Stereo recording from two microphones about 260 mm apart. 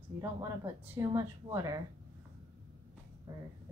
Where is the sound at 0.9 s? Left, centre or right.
Centre.